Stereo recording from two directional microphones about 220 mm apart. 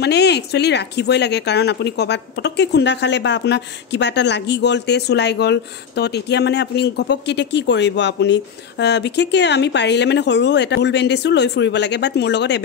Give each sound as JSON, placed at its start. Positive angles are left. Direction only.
{"t": 0.0, "sound": "speech", "side_deg": 50}